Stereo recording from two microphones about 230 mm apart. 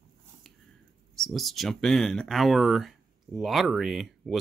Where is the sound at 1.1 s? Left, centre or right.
Centre.